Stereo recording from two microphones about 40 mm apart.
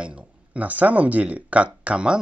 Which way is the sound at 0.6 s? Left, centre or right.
Right.